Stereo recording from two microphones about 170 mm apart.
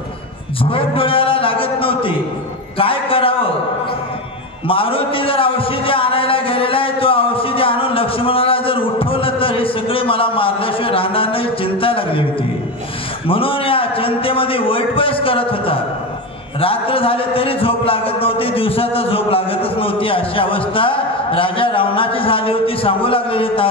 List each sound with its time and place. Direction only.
0.6 s a sound: 30° left (ahead or behind)
2.8 s a man's voice: 35° left (ahead or behind)
4.6 s a man's voice: 30° left (ahead or behind)
13.3 s a man's voice: 30° left (ahead or behind)